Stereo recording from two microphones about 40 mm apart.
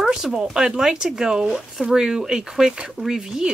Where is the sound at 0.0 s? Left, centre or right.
Centre.